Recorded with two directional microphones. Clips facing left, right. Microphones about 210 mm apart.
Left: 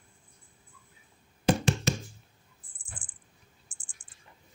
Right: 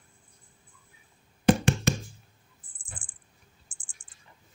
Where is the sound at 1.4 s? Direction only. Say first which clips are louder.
Right 4 dB; 60° right (ahead or behind).